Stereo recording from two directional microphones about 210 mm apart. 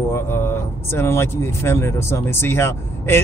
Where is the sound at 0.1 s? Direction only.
10° left (ahead or behind).